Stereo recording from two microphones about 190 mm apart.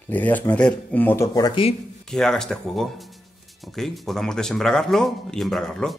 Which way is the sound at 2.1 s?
5° left (ahead or behind).